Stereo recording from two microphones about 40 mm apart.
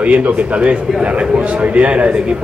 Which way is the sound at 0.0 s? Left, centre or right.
Right.